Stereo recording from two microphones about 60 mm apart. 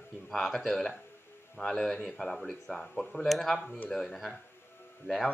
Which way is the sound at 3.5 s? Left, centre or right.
Left.